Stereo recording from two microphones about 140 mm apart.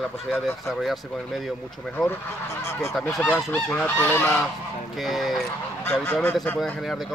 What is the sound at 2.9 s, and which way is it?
Speech, centre (ahead or behind).